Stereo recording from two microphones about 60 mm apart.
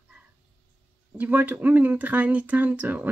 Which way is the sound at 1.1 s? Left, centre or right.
Right.